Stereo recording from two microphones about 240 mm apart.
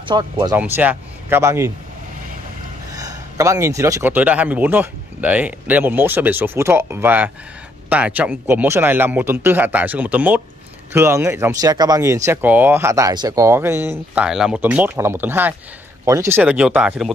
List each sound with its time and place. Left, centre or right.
0.0 s speech: centre
0.6 s speech: centre
2.9 s speech: centre